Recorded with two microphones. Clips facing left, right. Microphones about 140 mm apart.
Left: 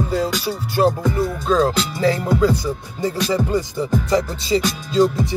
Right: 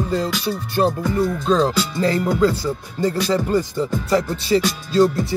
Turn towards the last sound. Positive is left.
turn(degrees=15)  # may be behind; listen again after turning